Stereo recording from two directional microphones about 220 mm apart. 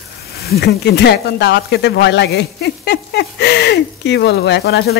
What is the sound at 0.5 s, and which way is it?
Speech, 50° left (ahead or behind).